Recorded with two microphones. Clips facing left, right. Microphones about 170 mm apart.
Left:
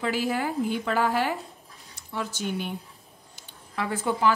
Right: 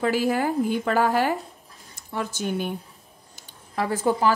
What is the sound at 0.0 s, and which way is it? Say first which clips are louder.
Speech: right 4 dB; 45° right (ahead or behind).